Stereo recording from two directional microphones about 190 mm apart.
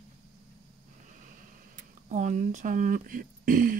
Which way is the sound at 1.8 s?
40° right (ahead or behind).